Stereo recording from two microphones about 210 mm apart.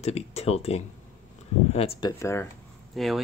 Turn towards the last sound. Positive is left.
turn(degrees=0)  # may be behind; listen again after turning